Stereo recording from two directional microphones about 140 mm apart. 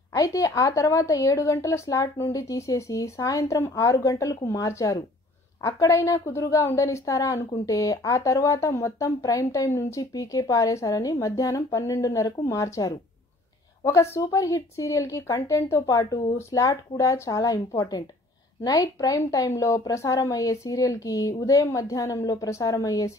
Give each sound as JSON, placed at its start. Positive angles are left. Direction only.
{"t": 0.1, "sound": "a woman's voice", "side_deg": 25}